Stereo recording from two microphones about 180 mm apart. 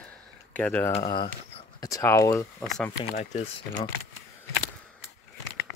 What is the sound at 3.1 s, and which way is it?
Speech, 40° left (ahead or behind).